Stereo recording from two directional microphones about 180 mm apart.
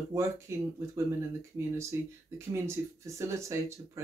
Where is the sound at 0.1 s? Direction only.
15° right (ahead or behind).